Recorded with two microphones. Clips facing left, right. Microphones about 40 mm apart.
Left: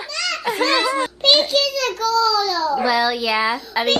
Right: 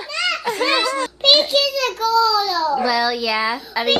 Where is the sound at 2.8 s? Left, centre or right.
Centre.